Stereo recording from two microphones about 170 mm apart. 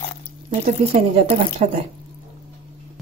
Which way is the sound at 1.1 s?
35° right (ahead or behind).